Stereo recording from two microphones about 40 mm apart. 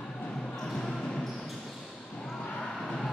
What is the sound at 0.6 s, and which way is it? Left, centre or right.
Basketball bounce, centre.